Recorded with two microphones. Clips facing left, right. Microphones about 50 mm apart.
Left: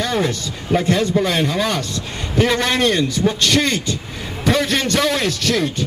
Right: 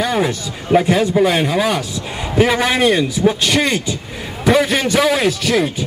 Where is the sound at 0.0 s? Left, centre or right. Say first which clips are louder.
Right 2 dB; centre.